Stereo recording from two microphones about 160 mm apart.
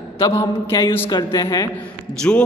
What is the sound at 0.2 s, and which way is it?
A man's voice, 20° left (ahead or behind).